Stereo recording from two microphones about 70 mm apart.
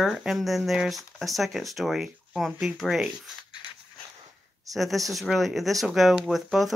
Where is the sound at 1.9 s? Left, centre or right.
Centre.